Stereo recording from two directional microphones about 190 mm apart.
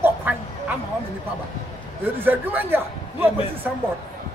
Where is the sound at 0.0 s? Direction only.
10° right (ahead or behind).